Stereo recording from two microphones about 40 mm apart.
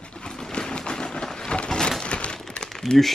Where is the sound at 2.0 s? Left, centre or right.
Left.